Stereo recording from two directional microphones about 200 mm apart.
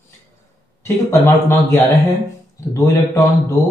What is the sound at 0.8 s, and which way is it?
Speech, 10° left (ahead or behind).